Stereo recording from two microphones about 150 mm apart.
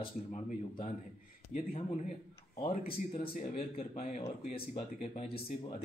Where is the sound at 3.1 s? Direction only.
55° left (ahead or behind).